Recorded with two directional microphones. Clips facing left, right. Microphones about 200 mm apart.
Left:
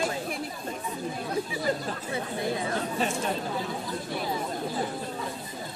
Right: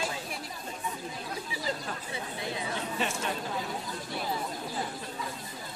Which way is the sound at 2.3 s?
45° left (ahead or behind).